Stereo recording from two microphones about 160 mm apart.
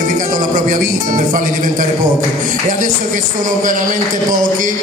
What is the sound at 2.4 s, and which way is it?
Speech, 55° right (ahead or behind).